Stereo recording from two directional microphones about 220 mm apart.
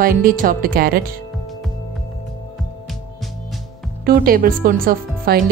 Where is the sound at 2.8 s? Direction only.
Centre (ahead or behind).